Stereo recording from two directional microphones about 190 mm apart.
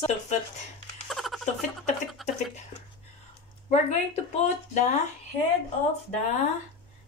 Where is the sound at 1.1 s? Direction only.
Centre (ahead or behind).